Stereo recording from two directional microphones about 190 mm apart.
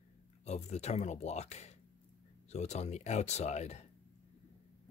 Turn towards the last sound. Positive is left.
turn(degrees=35)  # may be behind; listen again after turning